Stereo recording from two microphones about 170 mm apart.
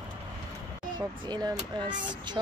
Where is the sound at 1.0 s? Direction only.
25° right (ahead or behind).